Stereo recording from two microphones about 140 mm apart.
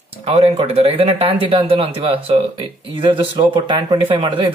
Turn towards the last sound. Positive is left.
turn(degrees=-40)  # may be behind; listen again after turning